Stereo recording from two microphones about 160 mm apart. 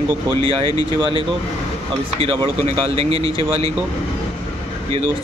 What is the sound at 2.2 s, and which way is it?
Speech, 30° right (ahead or behind).